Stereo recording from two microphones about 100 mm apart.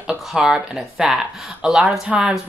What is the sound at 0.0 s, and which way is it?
Speech, 5° right (ahead or behind).